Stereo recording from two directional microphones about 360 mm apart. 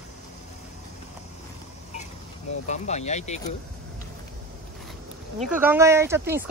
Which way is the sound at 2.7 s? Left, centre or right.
Centre.